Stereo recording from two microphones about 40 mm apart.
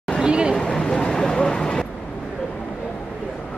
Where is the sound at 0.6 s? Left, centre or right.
Centre.